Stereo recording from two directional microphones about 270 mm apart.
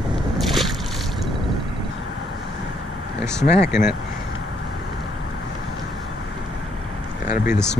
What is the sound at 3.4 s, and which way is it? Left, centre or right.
Speech, left.